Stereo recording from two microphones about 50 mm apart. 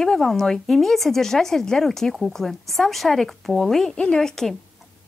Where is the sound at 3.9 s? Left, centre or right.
Left.